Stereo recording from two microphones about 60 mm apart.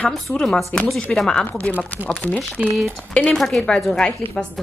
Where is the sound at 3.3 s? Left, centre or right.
Centre.